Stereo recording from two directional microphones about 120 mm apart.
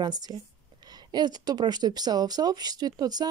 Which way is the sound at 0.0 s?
35° right (ahead or behind).